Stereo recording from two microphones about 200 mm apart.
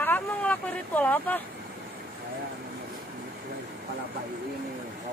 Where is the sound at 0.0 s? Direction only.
10° left (ahead or behind).